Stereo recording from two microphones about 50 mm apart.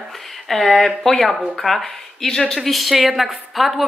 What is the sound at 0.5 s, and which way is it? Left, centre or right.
Speech, centre.